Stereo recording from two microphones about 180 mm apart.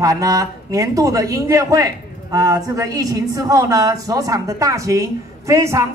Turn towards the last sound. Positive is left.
turn(degrees=-15)  # may be behind; listen again after turning